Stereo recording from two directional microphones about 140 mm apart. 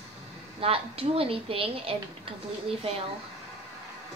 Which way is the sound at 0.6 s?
45° right (ahead or behind).